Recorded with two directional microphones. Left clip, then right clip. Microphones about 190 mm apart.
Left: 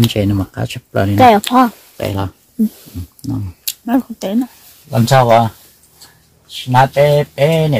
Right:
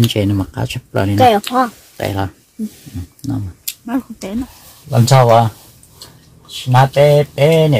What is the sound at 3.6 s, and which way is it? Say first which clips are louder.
Speech: left 6 dB; 50° left (ahead or behind).